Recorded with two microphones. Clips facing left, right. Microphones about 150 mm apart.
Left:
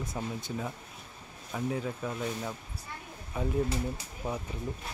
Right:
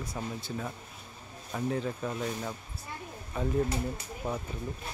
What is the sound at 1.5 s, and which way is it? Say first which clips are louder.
Speech: right 1 dB; 5° left (ahead or behind).